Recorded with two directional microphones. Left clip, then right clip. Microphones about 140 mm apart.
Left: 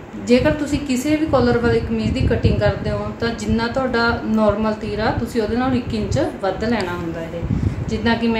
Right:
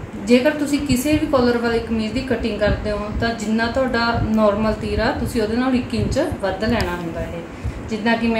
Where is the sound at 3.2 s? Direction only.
25° left (ahead or behind).